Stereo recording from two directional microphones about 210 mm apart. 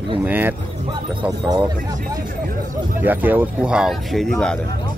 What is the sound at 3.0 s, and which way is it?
Speech, 10° right (ahead or behind).